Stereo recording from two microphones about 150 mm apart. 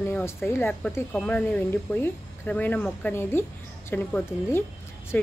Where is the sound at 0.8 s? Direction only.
5° left (ahead or behind).